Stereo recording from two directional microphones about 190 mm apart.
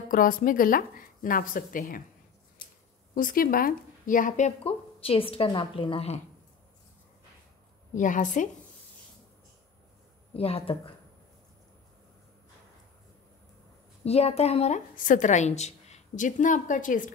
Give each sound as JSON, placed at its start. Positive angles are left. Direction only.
{"t": 0.1, "sound": "a woman's voice", "side_deg": 45}
{"t": 3.2, "sound": "a woman's voice", "side_deg": 45}
{"t": 7.9, "sound": "a woman's voice", "side_deg": 40}
{"t": 10.3, "sound": "a woman's voice", "side_deg": 30}
{"t": 14.0, "sound": "a woman's voice", "side_deg": 30}